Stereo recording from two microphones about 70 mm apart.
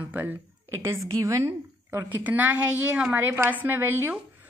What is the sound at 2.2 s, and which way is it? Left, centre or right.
A woman's voice, right.